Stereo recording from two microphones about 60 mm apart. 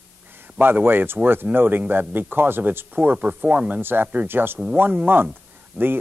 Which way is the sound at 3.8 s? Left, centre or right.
Right.